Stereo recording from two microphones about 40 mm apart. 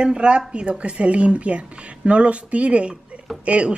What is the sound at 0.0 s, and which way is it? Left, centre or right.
A woman's voice, right.